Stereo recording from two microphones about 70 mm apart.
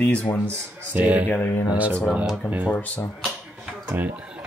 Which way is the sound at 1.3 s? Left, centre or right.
Left.